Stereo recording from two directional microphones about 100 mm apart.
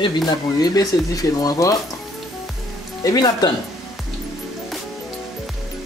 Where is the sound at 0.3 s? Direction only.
40° left (ahead or behind).